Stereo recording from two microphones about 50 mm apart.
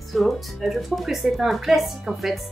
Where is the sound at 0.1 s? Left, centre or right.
Centre.